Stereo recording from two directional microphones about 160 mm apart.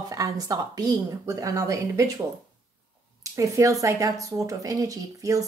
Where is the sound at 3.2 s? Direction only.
20° right (ahead or behind).